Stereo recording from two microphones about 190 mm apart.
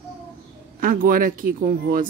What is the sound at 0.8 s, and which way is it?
Speech, 50° right (ahead or behind).